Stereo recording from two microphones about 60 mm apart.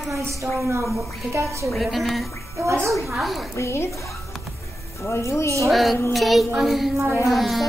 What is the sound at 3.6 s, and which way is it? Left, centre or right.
Speech, left.